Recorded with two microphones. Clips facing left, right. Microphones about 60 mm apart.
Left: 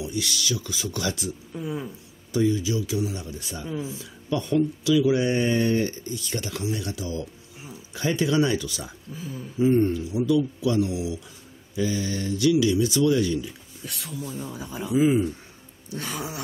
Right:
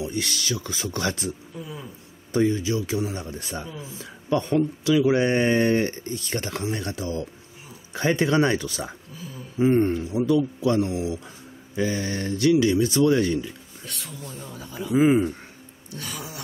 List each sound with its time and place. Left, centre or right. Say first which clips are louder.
0.0 s speech: right 1 dB; right
1.6 s a sound: left 6 dB; centre
2.3 s speech: right 1 dB; right
13.8 s speech: left 4 dB; centre
14.9 s speech: right 2 dB; right
16.0 s a sound: left 3 dB; left